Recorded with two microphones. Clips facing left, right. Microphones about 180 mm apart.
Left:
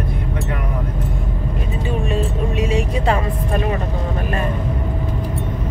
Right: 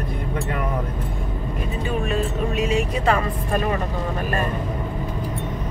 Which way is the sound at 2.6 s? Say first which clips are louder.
Left 2 dB; 30° left (ahead or behind).